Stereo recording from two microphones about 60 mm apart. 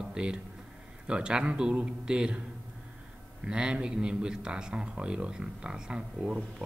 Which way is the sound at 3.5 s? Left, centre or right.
Centre.